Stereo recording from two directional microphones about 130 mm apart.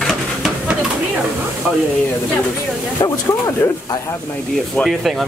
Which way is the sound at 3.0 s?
25° left (ahead or behind).